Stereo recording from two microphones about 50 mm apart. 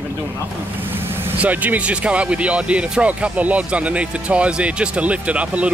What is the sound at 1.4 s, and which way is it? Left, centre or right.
Speech, right.